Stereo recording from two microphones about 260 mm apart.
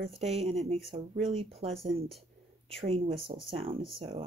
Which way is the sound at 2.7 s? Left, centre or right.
Right.